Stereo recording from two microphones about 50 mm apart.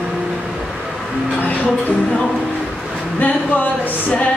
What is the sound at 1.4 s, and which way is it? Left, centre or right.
Music, left.